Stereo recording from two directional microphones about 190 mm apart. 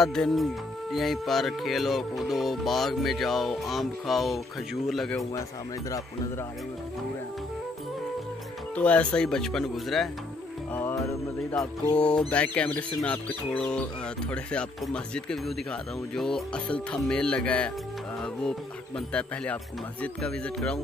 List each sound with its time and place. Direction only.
0.0 s speech: centre (ahead or behind)
5.9 s speech: 15° left (ahead or behind)
8.7 s speech: 5° left (ahead or behind)
10.7 s music: 10° left (ahead or behind)
11.6 s speech: 5° left (ahead or behind)